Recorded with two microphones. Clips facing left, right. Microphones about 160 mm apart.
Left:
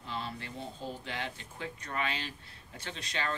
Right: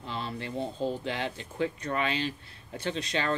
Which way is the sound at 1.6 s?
70° right (ahead or behind).